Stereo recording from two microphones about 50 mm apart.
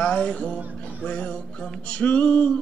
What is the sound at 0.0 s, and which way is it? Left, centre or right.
Music, centre.